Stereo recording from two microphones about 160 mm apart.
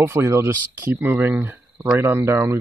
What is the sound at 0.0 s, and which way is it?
Speech, 15° right (ahead or behind).